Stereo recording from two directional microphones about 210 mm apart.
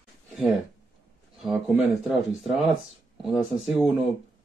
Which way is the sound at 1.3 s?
Centre (ahead or behind).